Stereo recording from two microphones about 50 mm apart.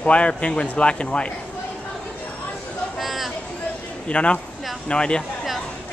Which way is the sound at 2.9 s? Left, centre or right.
Centre.